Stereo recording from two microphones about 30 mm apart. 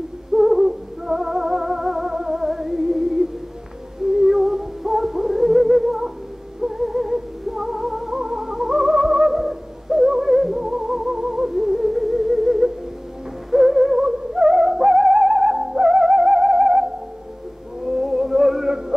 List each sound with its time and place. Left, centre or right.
0.3 s a sound: centre
0.7 s music: centre
18.7 s music: centre